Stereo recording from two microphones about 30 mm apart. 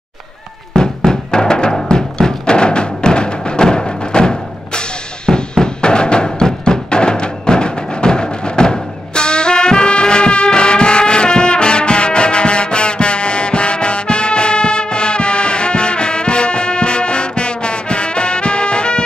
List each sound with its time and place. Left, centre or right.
0.7 s music: left